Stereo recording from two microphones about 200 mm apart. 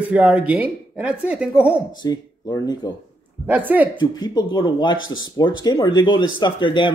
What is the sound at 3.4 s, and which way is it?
Speech, 10° right (ahead or behind).